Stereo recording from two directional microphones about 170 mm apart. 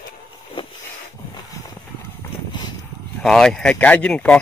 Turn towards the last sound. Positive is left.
turn(degrees=5)  # may be behind; listen again after turning